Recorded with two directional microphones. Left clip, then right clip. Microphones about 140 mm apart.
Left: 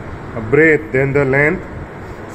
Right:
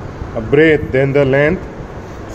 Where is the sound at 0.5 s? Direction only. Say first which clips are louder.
Right 1 dB; 30° right (ahead or behind).